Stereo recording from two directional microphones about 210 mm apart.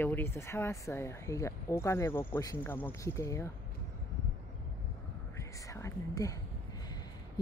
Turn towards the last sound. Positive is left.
turn(degrees=15)  # may be behind; listen again after turning